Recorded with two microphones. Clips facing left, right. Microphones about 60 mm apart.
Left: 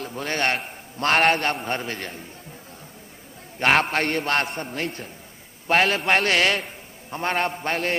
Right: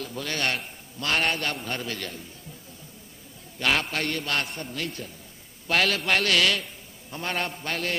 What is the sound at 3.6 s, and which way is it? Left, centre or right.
A man's voice, left.